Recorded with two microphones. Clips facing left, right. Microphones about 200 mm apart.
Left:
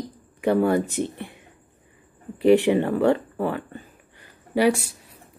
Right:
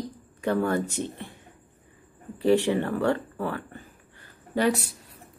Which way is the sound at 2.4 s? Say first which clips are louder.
Left 5 dB; 20° left (ahead or behind).